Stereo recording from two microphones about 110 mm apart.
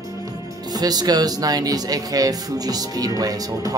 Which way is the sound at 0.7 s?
35° right (ahead or behind).